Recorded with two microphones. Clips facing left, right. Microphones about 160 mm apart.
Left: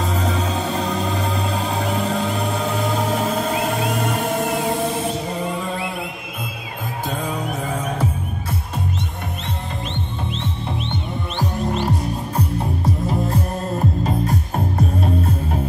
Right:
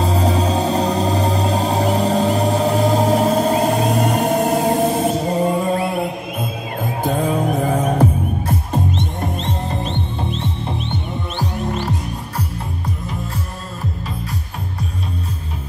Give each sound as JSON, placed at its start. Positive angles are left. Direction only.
{"t": 0.0, "sound": "music", "side_deg": -35}
{"t": 7.5, "sound": "music", "side_deg": -55}
{"t": 13.3, "sound": "music", "side_deg": 45}